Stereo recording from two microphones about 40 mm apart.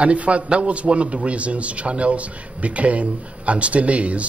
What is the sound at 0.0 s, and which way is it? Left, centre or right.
A man's voice, right.